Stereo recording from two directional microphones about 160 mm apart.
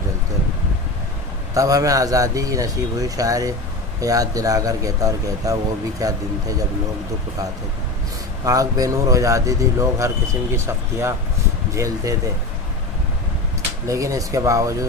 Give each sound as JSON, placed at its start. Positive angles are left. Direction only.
{"t": 1.5, "sound": "speech", "side_deg": -20}
{"t": 8.5, "sound": "speech", "side_deg": -20}
{"t": 13.8, "sound": "speech", "side_deg": -20}